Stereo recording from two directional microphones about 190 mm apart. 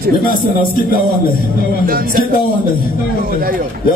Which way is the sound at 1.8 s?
50° right (ahead or behind).